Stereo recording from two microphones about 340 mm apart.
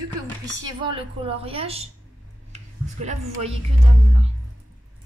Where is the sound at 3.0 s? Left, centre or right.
Centre.